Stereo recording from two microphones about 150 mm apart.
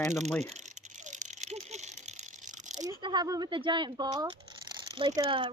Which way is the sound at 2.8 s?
30° right (ahead or behind).